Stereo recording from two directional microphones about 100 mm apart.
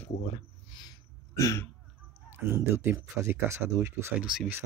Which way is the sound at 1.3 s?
30° left (ahead or behind).